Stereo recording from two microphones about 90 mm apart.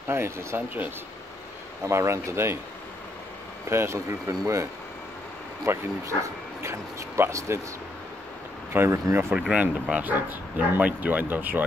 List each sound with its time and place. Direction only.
0.1 s speech: 30° right (ahead or behind)
1.9 s speech: 30° right (ahead or behind)
3.6 s speech: 30° right (ahead or behind)
5.7 s speech: 30° right (ahead or behind)
8.7 s speech: 30° right (ahead or behind)
9.3 s speech: 10° right (ahead or behind)